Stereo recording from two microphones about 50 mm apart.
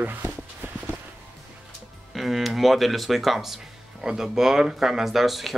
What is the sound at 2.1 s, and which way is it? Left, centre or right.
Speech, centre.